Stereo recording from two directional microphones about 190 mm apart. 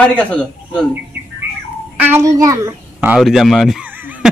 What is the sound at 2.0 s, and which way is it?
A child's voice, 15° right (ahead or behind).